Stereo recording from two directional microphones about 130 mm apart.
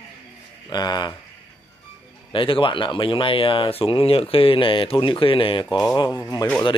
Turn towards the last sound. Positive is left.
turn(degrees=30)  # may be behind; listen again after turning